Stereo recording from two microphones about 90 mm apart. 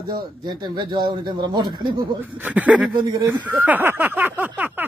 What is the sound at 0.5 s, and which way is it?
Speech, 55° right (ahead or behind).